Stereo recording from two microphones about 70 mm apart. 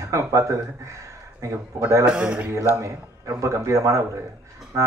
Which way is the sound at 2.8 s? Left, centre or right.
Right.